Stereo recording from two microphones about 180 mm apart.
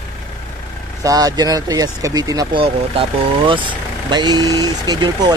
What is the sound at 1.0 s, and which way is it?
Speech, 20° right (ahead or behind).